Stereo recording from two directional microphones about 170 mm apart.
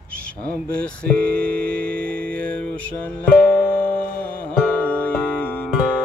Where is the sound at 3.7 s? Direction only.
10° left (ahead or behind).